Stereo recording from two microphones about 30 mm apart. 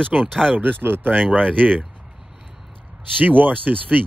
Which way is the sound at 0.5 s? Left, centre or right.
Right.